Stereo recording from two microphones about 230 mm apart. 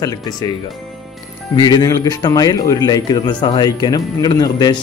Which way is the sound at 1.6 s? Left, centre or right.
Centre.